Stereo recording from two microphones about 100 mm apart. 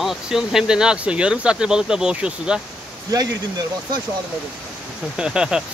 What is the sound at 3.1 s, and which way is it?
Speech, 35° right (ahead or behind).